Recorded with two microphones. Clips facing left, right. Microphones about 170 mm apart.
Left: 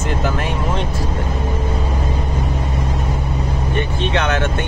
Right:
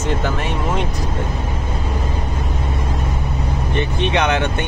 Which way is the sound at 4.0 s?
15° right (ahead or behind).